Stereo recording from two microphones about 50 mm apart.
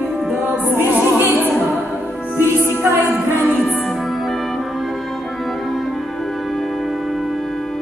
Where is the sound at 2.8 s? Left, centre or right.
Right.